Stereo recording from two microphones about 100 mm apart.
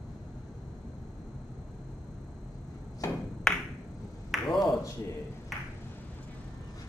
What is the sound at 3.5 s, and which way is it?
Finger snapping, 5° left (ahead or behind).